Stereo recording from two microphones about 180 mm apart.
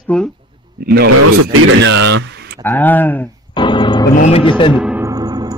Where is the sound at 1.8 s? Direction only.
80° right.